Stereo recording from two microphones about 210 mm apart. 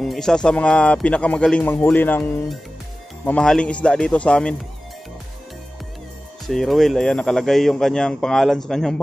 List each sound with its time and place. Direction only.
0.0 s a man's voice: centre (ahead or behind)
6.5 s a man's voice: centre (ahead or behind)